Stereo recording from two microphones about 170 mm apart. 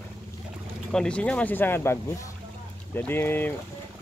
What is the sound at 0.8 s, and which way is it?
Speech, 5° left (ahead or behind).